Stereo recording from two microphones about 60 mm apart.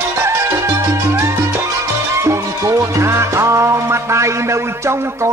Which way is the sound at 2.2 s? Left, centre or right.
Right.